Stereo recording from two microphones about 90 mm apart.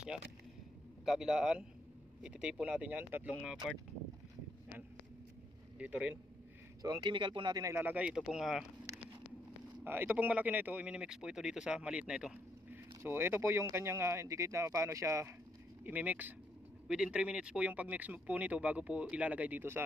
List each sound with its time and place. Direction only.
1.0 s speech: 5° right (ahead or behind); by 3.3 s 20° right (ahead or behind)
5.8 s speech: 15° right (ahead or behind)
6.8 s speech: 45° right (ahead or behind)
7.1 s speech: 65° right (ahead or behind)
7.7 s speech: 20° right (ahead or behind)
8.2 s speech: 5° right (ahead or behind)
9.8 s speech: 20° right (ahead or behind)
13.0 s speech: 25° right (ahead or behind)
15.8 s speech: 15° right (ahead or behind)
16.8 s speech: 5° right (ahead or behind)